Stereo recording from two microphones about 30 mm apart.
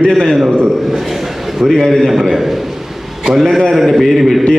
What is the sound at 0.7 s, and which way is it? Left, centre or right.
A man's voice, centre.